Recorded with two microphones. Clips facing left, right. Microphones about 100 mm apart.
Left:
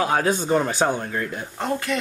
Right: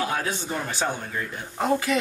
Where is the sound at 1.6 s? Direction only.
5° right (ahead or behind).